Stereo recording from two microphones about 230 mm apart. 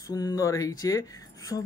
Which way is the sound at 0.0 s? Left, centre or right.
Centre.